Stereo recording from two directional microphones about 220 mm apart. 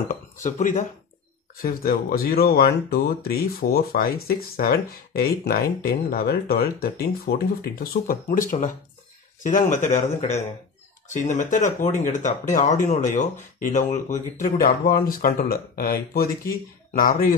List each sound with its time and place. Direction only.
0.1 s speech: 35° left (ahead or behind)